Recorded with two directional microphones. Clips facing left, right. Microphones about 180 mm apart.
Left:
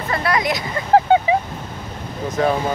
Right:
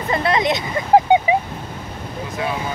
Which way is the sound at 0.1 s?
25° right (ahead or behind).